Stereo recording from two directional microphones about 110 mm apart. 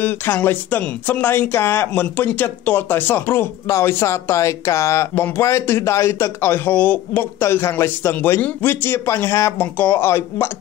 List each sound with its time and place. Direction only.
0.0 s speech: 15° left (ahead or behind)